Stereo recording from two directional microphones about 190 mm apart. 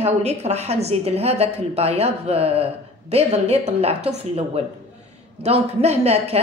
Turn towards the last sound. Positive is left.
turn(degrees=-35)  # may be behind; listen again after turning